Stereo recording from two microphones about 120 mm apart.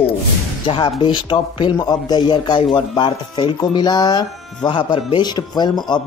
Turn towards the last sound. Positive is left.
turn(degrees=35)  # may be behind; listen again after turning